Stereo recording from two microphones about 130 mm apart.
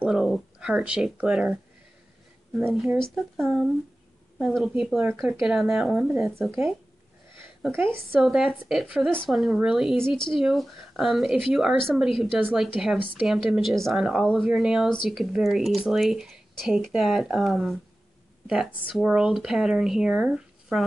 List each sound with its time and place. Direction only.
0.0 s speech: 5° right (ahead or behind)
7.7 s a woman's voice: 15° right (ahead or behind)
8.2 s speech: centre (ahead or behind)